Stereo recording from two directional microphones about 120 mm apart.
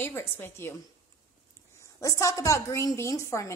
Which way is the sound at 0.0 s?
20° left (ahead or behind).